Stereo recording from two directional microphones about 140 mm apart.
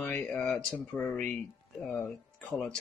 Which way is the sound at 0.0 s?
10° left (ahead or behind).